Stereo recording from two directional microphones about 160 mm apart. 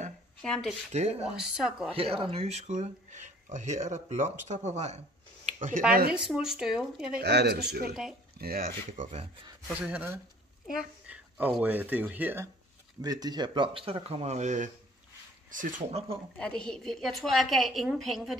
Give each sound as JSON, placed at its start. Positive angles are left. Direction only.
{"t": 0.4, "sound": "a woman's voice", "side_deg": 5}
{"t": 0.9, "sound": "speech", "side_deg": -45}
{"t": 1.3, "sound": "a woman's voice", "side_deg": -5}
{"t": 2.0, "sound": "speech", "side_deg": -35}
{"t": 6.1, "sound": "a woman's voice", "side_deg": -5}
{"t": 7.2, "sound": "speech", "side_deg": -90}
{"t": 7.9, "sound": "a woman's voice", "side_deg": -5}
{"t": 8.4, "sound": "speech", "side_deg": -70}
{"t": 9.7, "sound": "speech", "side_deg": -10}
{"t": 13.0, "sound": "speech", "side_deg": -25}
{"t": 16.3, "sound": "a woman's voice", "side_deg": 5}